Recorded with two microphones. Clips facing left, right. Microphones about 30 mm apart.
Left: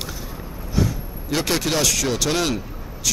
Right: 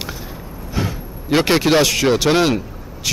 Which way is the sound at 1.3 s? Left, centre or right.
Right.